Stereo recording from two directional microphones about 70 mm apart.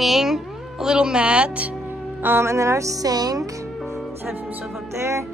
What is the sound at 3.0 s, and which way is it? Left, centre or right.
Speech, right.